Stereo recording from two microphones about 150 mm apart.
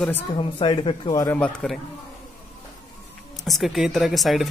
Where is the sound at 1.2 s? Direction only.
10° left (ahead or behind).